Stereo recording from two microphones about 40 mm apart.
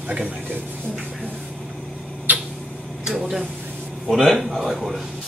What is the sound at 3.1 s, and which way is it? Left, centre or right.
Speech, centre.